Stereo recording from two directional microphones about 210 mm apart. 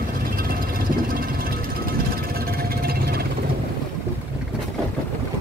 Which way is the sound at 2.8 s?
45° right (ahead or behind).